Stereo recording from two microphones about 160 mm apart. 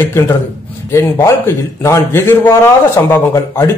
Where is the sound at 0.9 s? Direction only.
20° left (ahead or behind).